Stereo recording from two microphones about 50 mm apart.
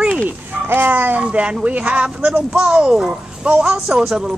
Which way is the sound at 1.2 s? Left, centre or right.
Right.